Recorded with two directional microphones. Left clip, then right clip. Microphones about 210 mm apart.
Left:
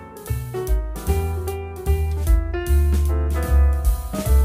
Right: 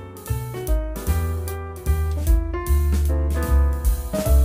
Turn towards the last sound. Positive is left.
turn(degrees=0)  # may be behind; listen again after turning